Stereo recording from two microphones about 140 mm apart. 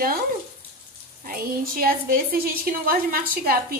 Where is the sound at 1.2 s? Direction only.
90° right.